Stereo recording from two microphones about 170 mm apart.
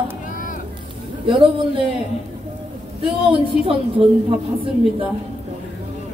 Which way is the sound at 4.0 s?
35° right (ahead or behind).